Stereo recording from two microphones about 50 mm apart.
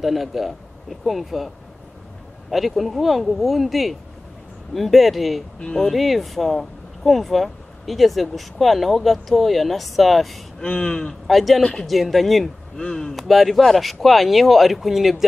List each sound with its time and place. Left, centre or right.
0.0 s speech: centre
2.5 s speech: centre
5.6 s speech: centre
5.9 s speech: centre
10.6 s speech: centre
11.2 s speech: centre
12.7 s speech: centre
13.1 s speech: centre